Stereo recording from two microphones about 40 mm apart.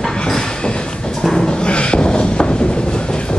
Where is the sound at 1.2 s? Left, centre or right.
Centre.